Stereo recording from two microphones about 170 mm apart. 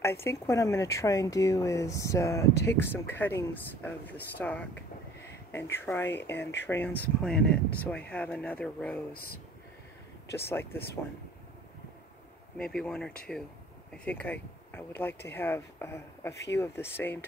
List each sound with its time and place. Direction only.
0.0 s speech: 15° left (ahead or behind)
4.4 s a sound: 10° left (ahead or behind)
5.9 s speech: 15° left (ahead or behind)
9.1 s speech: 60° left (ahead or behind)
10.3 s speech: 15° left (ahead or behind)
12.5 s speech: 5° left (ahead or behind)